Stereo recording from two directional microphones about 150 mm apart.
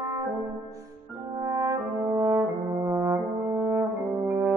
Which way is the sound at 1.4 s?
25° right (ahead or behind).